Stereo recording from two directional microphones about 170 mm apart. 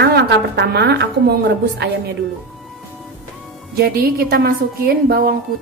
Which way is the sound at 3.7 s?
65° right (ahead or behind).